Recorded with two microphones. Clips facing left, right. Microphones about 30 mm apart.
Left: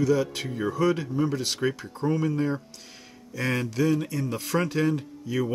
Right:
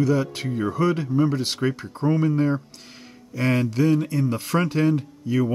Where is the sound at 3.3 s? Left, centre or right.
Right.